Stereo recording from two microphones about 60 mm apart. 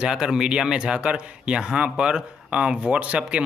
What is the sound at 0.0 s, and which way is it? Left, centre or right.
Speech, centre.